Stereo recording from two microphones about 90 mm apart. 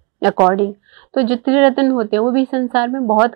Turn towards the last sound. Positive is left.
turn(degrees=-25)  # may be behind; listen again after turning